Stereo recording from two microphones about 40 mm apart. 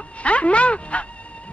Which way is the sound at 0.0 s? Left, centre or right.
Left.